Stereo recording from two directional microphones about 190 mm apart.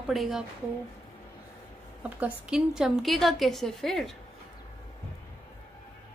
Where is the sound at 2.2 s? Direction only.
5° right (ahead or behind).